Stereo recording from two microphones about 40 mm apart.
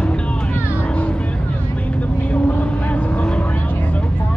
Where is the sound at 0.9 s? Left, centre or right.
Left.